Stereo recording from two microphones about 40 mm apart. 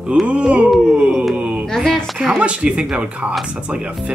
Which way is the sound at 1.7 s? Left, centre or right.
Centre.